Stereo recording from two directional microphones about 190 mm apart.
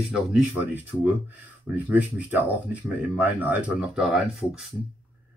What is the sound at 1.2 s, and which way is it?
Speech, 10° right (ahead or behind).